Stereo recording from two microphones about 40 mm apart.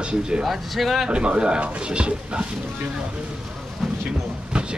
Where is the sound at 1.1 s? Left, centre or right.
Right.